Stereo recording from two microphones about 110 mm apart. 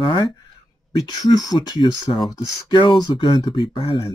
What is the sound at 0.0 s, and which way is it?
Speech, 45° left (ahead or behind).